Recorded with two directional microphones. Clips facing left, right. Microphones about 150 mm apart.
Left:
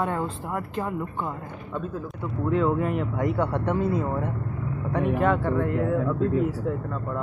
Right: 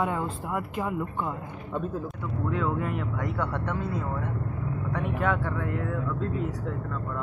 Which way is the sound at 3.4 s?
30° left (ahead or behind).